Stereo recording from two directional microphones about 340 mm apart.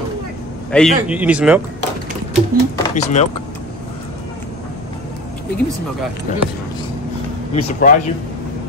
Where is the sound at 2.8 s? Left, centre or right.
Centre.